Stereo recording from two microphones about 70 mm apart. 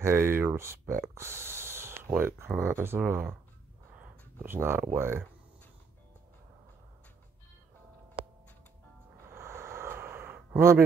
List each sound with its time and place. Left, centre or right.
0.0 s speech: right
4.5 s speech: right
9.3 s a sound: right